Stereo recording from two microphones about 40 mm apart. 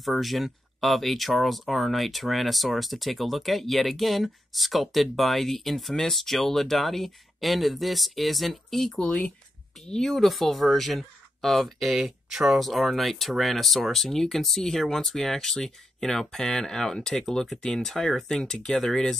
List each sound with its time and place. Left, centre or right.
0.0 s speech: centre
10.1 s speech: centre